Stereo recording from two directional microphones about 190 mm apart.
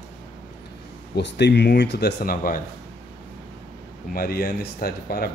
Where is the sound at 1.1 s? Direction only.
65° left (ahead or behind); by 2.6 s 50° left (ahead or behind).